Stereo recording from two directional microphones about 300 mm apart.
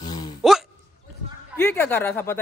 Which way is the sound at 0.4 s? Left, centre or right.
Centre.